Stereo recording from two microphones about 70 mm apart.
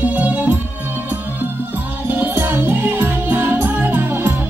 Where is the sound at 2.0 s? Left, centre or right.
Right.